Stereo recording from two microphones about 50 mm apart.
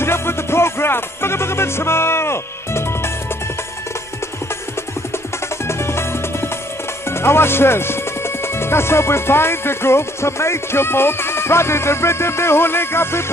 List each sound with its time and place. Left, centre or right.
0.0 s music: left
5.7 s music: left
7.1 s speech: left